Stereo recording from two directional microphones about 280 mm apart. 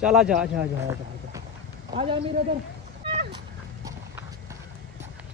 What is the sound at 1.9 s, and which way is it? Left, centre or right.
Speech, centre.